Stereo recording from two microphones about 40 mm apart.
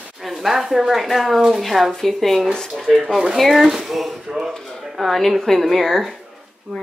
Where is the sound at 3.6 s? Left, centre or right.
Centre.